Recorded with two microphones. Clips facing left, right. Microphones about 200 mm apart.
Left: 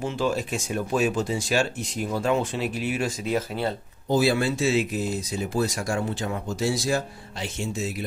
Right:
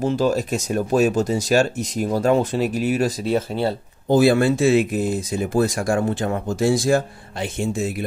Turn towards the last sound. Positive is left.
turn(degrees=-55)  # may be behind; listen again after turning